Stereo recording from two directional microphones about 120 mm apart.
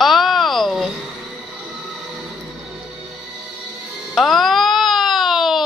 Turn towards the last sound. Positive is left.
turn(degrees=0)  # may be behind; listen again after turning